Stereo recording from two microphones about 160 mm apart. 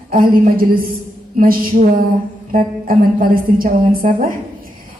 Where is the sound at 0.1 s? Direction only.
65° right (ahead or behind).